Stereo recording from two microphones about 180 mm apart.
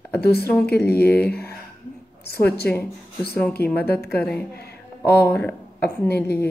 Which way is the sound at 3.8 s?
60° left (ahead or behind).